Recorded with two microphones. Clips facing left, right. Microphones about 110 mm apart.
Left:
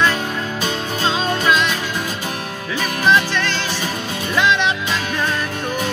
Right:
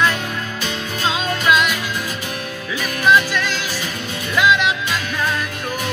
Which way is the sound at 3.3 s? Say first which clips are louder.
Left 1 dB; 10° right (ahead or behind).